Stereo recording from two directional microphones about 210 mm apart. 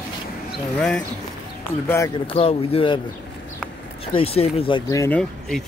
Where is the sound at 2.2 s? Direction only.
25° left (ahead or behind).